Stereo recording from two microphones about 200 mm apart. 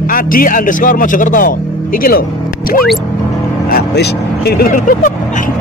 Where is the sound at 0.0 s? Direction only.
45° left (ahead or behind).